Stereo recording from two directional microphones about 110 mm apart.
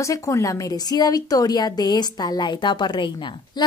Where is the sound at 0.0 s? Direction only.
30° left (ahead or behind).